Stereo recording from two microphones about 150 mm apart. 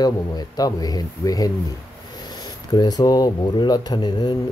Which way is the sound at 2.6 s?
25° left (ahead or behind).